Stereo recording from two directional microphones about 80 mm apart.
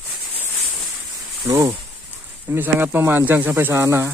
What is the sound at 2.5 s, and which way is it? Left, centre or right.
Speech, right.